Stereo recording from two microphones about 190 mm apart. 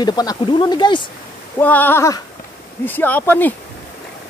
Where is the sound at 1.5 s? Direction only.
10° left (ahead or behind).